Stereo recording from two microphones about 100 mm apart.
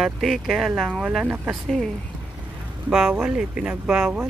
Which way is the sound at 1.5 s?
5° left (ahead or behind).